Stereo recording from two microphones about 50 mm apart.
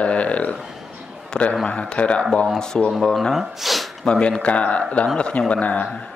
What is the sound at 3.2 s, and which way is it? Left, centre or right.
Speech, centre.